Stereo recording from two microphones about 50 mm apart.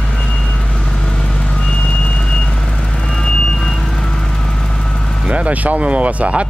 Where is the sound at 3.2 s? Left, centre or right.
Centre.